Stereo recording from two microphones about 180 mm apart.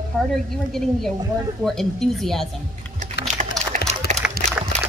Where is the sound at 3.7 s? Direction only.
45° right (ahead or behind).